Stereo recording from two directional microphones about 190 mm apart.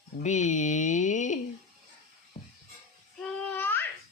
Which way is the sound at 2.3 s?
35° left (ahead or behind).